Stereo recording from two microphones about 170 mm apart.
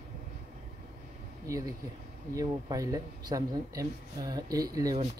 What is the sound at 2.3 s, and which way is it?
Speech, 20° right (ahead or behind).